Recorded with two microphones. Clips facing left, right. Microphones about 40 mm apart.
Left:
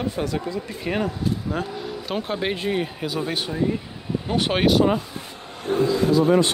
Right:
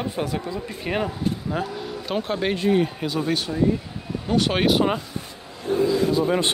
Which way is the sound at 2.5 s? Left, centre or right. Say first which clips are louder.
Right 4 dB; centre.